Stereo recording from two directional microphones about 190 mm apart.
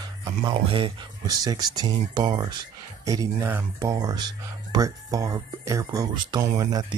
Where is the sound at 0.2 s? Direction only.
20° right (ahead or behind).